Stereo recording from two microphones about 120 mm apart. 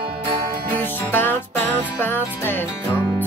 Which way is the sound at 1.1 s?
15° left (ahead or behind).